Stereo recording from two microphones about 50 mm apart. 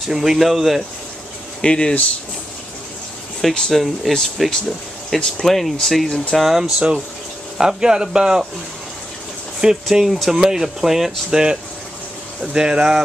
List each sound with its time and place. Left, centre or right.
0.1 s speech: centre
1.6 s speech: centre
3.3 s speech: centre
3.7 s speech: centre
7.5 s speech: centre
9.6 s speech: centre
12.5 s speech: centre